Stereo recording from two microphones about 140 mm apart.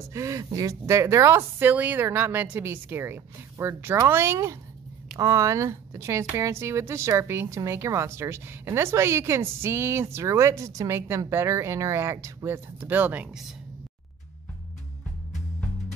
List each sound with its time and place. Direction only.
0.1 s a woman's voice: 20° right (ahead or behind); by 13.6 s 5° right (ahead or behind)